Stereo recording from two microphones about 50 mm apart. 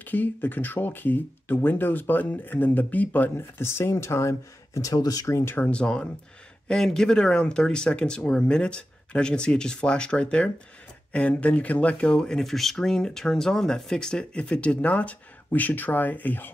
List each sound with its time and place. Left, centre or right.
0.0 s speech: left
3.3 s speech: left
5.7 s speech: left
6.7 s speech: centre; by 12.2 s left
12.2 s speech: centre; by 16.4 s left